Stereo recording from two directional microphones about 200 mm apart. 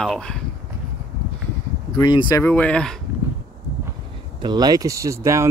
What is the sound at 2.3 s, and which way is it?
Speech, 10° left (ahead or behind).